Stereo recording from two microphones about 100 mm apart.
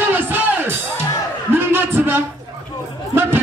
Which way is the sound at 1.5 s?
20° right (ahead or behind).